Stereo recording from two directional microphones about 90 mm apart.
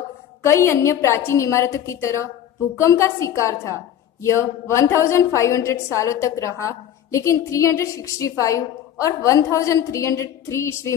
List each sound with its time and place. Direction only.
0.4 s a woman's voice: 30° left (ahead or behind)